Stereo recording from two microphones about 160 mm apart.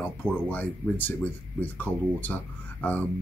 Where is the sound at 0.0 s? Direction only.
10° left (ahead or behind).